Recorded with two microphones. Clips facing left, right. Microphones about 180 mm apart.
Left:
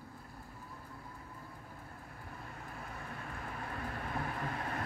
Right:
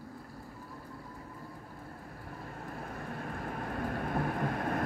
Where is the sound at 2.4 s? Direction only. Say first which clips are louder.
Right 7 dB; 50° right (ahead or behind).